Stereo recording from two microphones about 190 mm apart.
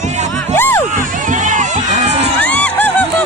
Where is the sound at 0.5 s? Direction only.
10° left (ahead or behind).